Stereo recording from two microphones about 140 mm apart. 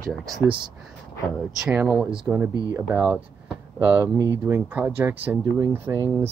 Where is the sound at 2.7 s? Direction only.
15° right (ahead or behind).